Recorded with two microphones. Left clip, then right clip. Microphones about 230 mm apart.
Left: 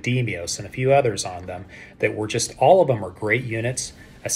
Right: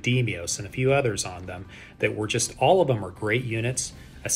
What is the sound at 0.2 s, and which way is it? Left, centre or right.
Speech, centre.